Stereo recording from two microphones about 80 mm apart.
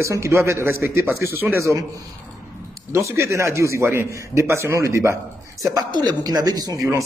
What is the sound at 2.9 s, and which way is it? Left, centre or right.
A man's voice, right.